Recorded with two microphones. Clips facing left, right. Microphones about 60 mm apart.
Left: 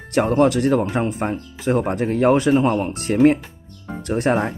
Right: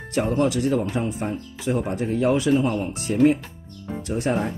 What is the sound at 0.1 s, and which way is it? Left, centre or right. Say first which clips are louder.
Speech: left 5 dB; left.